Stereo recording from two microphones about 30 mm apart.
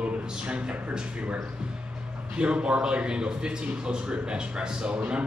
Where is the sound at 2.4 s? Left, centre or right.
Right.